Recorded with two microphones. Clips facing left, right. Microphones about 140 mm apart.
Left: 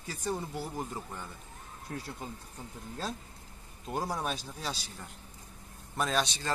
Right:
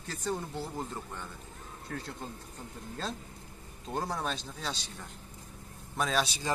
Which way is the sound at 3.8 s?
5° left (ahead or behind).